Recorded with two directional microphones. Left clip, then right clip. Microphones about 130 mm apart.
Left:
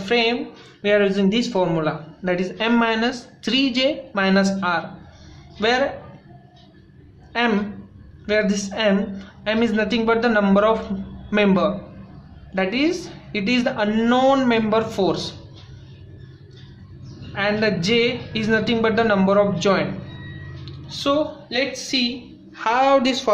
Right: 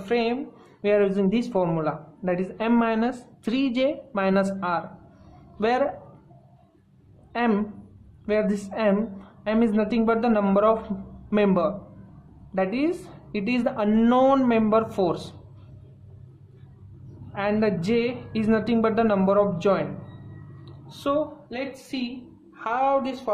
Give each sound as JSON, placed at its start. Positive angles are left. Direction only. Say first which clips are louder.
{"t": 0.0, "sound": "speech", "louder": "left 5 dB", "side_deg": -40}
{"t": 7.3, "sound": "a woman's voice", "louder": "left 4 dB", "side_deg": -40}
{"t": 17.3, "sound": "speech", "louder": "left 4 dB", "side_deg": -40}
{"t": 20.6, "sound": "a sound", "louder": "left 6 dB", "side_deg": -35}
{"t": 21.5, "sound": "a woman's voice", "louder": "left 10 dB", "side_deg": -10}
{"t": 22.6, "sound": "a woman's voice", "louder": "left 6 dB", "side_deg": 5}
{"t": 22.8, "sound": "speech", "louder": "left 6 dB", "side_deg": 20}